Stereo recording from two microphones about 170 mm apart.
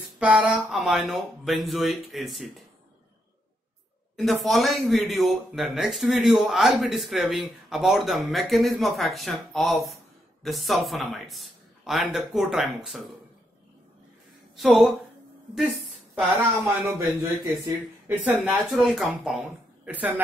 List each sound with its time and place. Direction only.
0.2 s speech: 5° right (ahead or behind)
4.2 s speech: centre (ahead or behind)
14.6 s speech: centre (ahead or behind)
16.2 s speech: 15° right (ahead or behind)
18.0 s speech: 10° right (ahead or behind)